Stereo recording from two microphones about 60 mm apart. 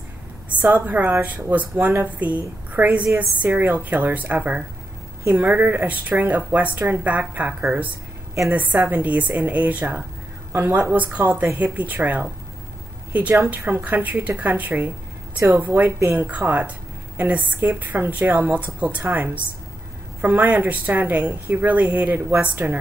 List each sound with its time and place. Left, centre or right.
0.5 s a woman's voice: right
10.9 s a woman's voice: right
13.7 s a woman's voice: right